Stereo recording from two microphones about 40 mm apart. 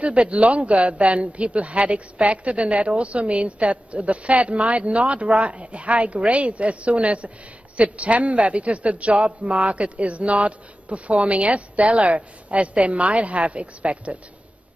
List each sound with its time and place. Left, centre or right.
0.0 s speech: right